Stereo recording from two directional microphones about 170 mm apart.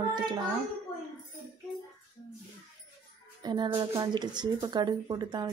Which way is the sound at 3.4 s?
25° right (ahead or behind).